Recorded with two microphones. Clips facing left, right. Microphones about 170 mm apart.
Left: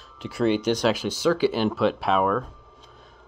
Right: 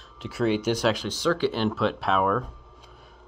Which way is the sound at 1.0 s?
10° left (ahead or behind).